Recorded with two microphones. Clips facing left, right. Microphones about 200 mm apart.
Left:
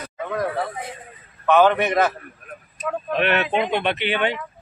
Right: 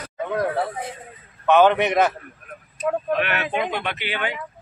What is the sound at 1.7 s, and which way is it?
Speech, 15° right (ahead or behind).